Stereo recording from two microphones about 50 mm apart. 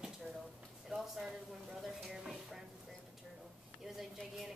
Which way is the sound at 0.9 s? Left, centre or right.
Centre.